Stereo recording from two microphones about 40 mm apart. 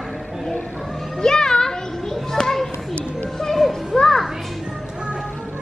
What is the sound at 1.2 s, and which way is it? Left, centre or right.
Children playing, centre.